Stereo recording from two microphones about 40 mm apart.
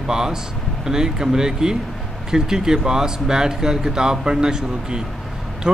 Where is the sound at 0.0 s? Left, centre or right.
Centre.